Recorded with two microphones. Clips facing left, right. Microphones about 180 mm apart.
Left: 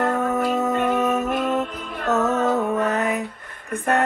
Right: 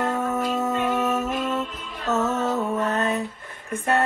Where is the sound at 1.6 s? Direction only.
60° left (ahead or behind).